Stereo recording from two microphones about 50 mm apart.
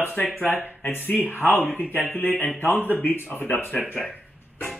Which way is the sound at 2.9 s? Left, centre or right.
Left.